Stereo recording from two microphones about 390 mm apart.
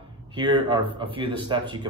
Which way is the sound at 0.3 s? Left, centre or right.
Centre.